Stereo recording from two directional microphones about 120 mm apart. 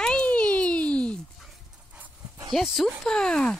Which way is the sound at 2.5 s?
Centre (ahead or behind).